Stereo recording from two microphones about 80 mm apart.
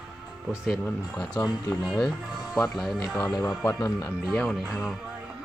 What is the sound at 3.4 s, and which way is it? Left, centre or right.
Speech, left.